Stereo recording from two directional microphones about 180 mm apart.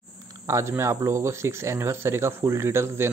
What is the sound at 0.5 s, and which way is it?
Speech, 15° right (ahead or behind).